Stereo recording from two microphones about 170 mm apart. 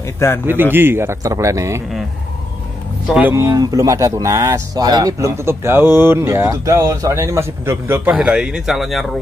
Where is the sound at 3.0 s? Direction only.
10° right (ahead or behind).